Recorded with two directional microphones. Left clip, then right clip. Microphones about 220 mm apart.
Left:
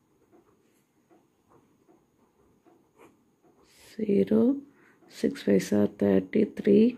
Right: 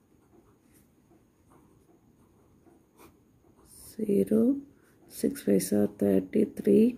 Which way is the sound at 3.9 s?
Centre (ahead or behind).